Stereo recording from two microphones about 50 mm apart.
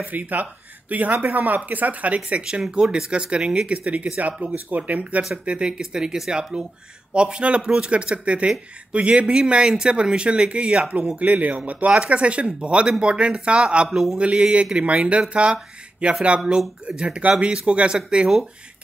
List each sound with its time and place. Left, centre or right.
0.0 s speech: right
5.3 s speech: right
5.8 s speech: centre
11.1 s speech: right